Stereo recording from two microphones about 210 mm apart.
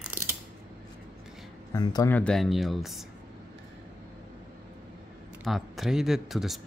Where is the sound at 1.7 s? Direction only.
20° left (ahead or behind); by 3.0 s centre (ahead or behind).